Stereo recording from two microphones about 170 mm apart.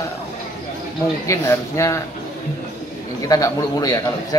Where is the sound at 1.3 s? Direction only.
15° left (ahead or behind).